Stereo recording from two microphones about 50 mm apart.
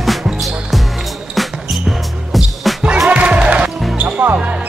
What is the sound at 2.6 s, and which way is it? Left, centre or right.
Music, centre.